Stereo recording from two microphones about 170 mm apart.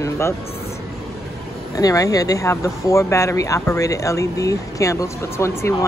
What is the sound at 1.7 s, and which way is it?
Speech, 20° left (ahead or behind).